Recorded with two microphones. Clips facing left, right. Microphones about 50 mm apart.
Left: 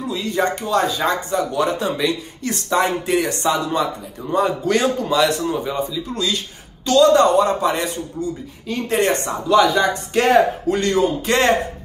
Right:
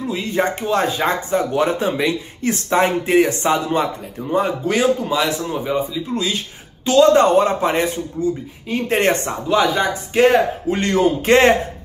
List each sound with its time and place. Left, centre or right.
0.1 s speech: right
4.3 s speech: centre; by 9.1 s right
9.5 s speech: centre
10.7 s speech: right